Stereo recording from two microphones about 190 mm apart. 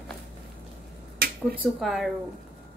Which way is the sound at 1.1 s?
55° right (ahead or behind).